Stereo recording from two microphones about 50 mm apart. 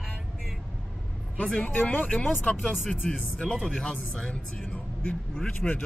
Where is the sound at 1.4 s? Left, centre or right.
Left.